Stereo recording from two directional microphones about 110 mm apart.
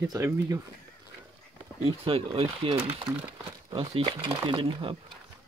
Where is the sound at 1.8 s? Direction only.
60° right (ahead or behind).